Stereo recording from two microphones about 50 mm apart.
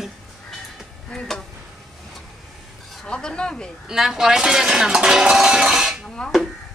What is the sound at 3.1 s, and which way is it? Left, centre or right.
Speech, centre.